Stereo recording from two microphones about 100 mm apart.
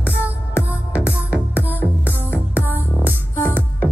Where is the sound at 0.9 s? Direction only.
15° right (ahead or behind).